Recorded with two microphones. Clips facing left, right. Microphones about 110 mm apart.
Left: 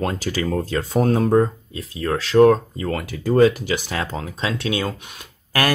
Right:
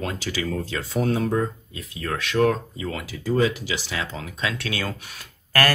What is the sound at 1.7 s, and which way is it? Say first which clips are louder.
Speech: left 6 dB; 30° left (ahead or behind).